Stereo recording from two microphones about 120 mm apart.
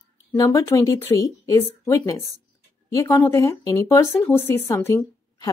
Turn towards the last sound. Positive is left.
turn(degrees=20)  # may be behind; listen again after turning